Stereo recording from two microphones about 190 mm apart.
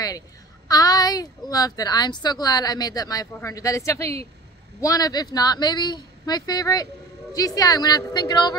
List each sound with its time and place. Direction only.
0.7 s speech: 20° left (ahead or behind)